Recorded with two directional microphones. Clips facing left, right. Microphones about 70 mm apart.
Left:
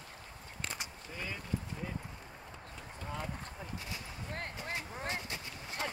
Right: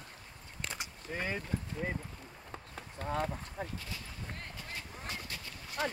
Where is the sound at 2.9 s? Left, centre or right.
Right.